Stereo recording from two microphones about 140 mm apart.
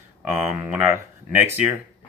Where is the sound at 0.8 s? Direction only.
20° right (ahead or behind).